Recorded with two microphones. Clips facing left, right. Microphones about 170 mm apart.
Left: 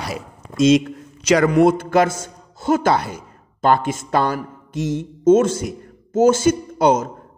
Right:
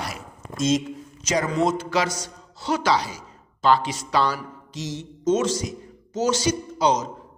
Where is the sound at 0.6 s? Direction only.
70° left (ahead or behind).